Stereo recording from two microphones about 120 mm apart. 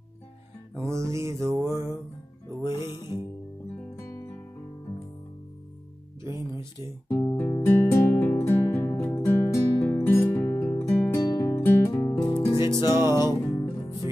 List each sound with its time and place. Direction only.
0.8 s mantra: 25° right (ahead or behind)
2.9 s music: 35° left (ahead or behind)
7.1 s music: 20° left (ahead or behind); by 12.6 s 40° left (ahead or behind)
12.9 s music: 25° right (ahead or behind)
13.6 s music: 25° left (ahead or behind)